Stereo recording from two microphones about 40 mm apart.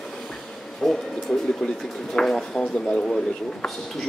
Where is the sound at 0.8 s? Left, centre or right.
Centre; by 3.6 s left.